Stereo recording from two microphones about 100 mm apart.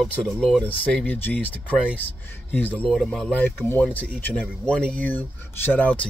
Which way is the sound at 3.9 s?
15° left (ahead or behind).